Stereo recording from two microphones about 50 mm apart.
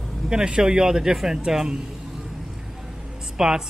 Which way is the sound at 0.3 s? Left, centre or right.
Centre.